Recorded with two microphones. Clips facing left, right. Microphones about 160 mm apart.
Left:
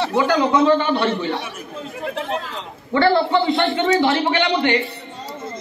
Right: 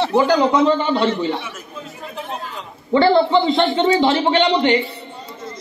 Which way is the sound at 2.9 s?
20° right (ahead or behind).